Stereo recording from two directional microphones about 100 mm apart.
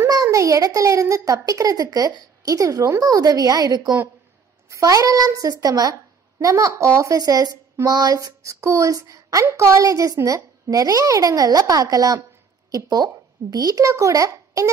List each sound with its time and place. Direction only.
0.1 s a child's voice: 35° right (ahead or behind)